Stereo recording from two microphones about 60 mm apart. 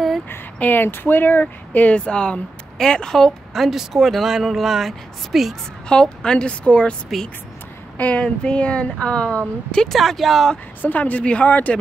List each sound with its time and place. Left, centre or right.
0.6 s speech: left
2.0 s speech: centre
3.5 s speech: centre
5.9 s speech: centre
8.0 s speech: centre
9.9 s speech: centre
10.8 s speech: left